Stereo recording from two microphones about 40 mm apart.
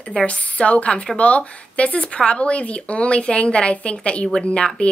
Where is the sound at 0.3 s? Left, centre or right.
Left.